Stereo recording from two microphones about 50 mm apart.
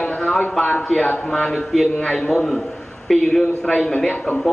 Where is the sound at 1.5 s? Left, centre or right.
Centre.